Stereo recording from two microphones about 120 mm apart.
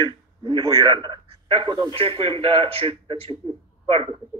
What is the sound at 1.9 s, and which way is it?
Speech, 50° right (ahead or behind).